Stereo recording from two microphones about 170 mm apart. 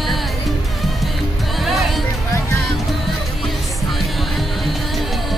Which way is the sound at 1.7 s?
Centre (ahead or behind).